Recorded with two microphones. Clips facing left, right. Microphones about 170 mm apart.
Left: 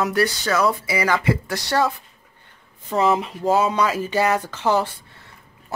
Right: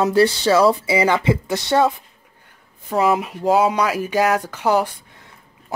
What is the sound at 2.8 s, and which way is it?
Speech, 5° right (ahead or behind).